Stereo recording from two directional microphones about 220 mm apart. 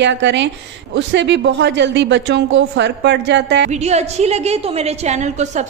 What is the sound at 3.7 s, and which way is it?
A woman's voice, 30° right (ahead or behind).